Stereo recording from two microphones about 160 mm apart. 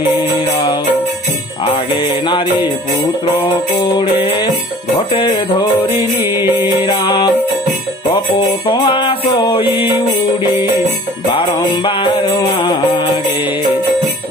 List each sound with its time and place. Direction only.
1.6 s music: 30° left (ahead or behind)
6.8 s music: 30° left (ahead or behind)
8.6 s music: 30° left (ahead or behind)
11.3 s music: 30° left (ahead or behind)